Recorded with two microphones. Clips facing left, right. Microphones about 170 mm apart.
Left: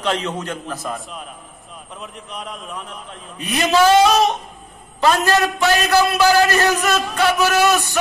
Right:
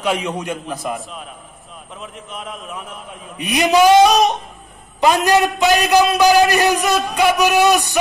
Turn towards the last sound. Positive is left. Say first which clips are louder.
# right 2 dB
turn(degrees=-15)  # may be behind; listen again after turning